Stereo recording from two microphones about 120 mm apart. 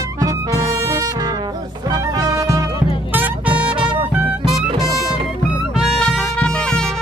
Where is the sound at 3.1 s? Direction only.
15° right (ahead or behind).